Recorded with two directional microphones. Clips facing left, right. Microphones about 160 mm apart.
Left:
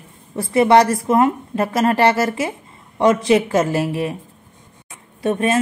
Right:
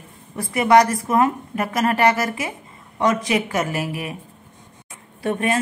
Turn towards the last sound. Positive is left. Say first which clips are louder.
# left 3 dB
turn(degrees=25)  # may be behind; listen again after turning